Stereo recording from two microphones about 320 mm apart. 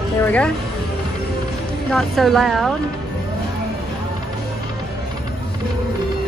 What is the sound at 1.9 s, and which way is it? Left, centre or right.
Speech, centre.